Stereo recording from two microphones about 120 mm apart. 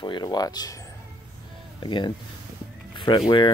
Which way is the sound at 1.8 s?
40° left (ahead or behind).